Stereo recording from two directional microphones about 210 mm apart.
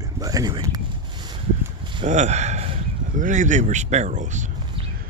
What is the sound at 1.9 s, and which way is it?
Speech, 30° right (ahead or behind).